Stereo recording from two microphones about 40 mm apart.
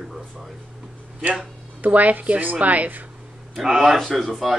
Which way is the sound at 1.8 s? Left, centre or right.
Right.